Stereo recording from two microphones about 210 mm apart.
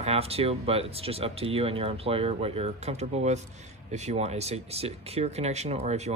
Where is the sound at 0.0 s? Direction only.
30° right (ahead or behind).